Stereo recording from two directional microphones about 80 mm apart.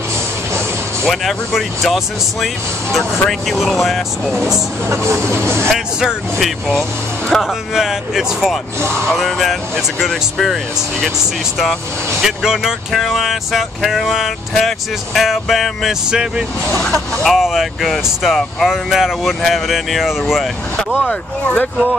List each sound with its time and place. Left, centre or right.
1.0 s speech: centre
4.8 s speech: right
5.7 s speech: centre
7.3 s speech: centre
21.1 s speech: centre